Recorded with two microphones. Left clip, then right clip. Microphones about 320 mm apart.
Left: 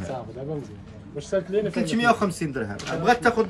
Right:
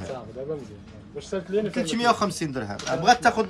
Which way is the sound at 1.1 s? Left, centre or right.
Left.